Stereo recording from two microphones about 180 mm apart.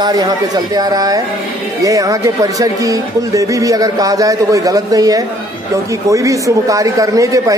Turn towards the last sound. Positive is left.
turn(degrees=-20)  # may be behind; listen again after turning